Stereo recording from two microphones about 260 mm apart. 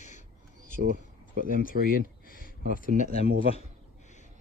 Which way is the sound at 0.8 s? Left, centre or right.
Right.